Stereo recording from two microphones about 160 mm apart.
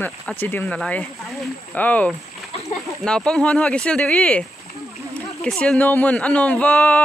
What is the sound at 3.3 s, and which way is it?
Speech, 5° left (ahead or behind).